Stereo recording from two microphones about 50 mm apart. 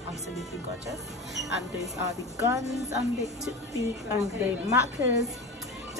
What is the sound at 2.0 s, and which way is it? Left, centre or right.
Speech, right.